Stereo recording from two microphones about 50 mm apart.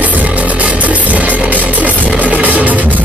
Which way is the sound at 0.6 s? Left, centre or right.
Right.